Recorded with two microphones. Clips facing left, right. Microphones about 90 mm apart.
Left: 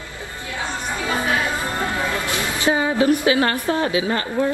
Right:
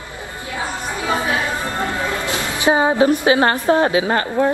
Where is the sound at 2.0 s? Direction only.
20° right (ahead or behind).